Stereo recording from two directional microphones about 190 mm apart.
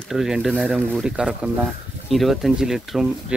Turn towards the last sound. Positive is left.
turn(degrees=-5)  # may be behind; listen again after turning